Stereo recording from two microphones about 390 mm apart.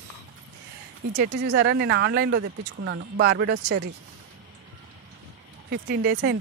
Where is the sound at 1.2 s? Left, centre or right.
Right.